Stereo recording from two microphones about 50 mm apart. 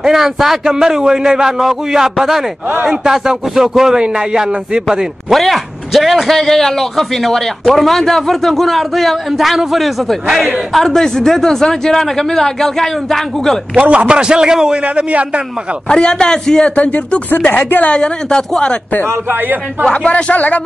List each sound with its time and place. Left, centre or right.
0.0 s a man's voice: centre
5.3 s a man's voice: centre
10.7 s speech: centre
13.7 s a man's voice: right
15.9 s speech: centre
16.7 s a woman's voice: left
19.0 s a man's voice: right
19.8 s a woman's voice: centre